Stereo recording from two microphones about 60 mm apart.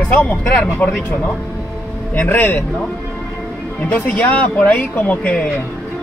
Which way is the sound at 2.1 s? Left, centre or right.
Left.